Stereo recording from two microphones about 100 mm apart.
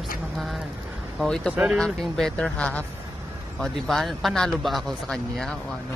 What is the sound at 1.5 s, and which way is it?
Speech, 10° right (ahead or behind).